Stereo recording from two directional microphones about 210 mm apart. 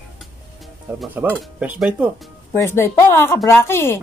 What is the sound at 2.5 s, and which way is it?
Speech, 10° left (ahead or behind).